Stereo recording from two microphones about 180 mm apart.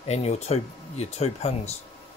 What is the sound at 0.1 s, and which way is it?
Speech, 35° left (ahead or behind).